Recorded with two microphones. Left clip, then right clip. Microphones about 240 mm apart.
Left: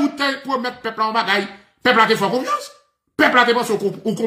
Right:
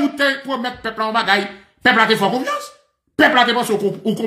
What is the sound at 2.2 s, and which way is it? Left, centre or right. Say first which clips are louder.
Speech: right 1 dB; left.